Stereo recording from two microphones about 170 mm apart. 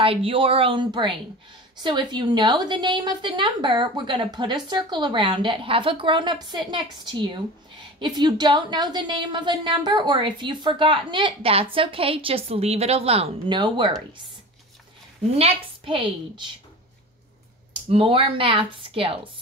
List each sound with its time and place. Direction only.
0.0 s a woman's voice: 30° right (ahead or behind)
15.3 s speech: 35° right (ahead or behind)
17.8 s speech: 30° right (ahead or behind)